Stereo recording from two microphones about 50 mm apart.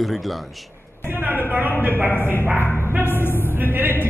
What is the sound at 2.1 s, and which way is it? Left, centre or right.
Speech, left.